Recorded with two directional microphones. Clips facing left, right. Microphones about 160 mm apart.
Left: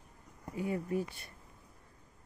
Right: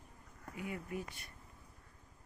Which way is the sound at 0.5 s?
35° left (ahead or behind).